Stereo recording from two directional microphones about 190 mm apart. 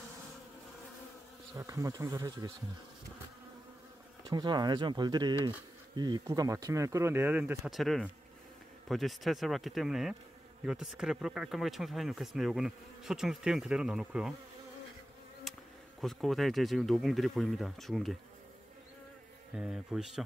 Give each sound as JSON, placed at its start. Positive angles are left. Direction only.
{"t": 1.5, "sound": "speech", "side_deg": -15}
{"t": 4.3, "sound": "speech", "side_deg": -20}
{"t": 15.5, "sound": "bee", "side_deg": 0}
{"t": 16.0, "sound": "speech", "side_deg": 0}
{"t": 19.5, "sound": "speech", "side_deg": -5}